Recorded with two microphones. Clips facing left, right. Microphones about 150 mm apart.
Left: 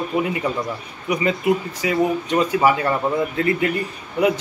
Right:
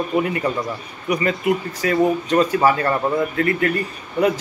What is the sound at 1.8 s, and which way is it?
A man's voice, 15° left (ahead or behind).